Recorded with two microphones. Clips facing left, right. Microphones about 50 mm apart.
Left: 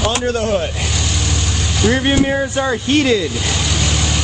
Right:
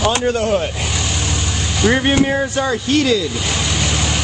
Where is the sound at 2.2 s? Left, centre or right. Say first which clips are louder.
Even; centre.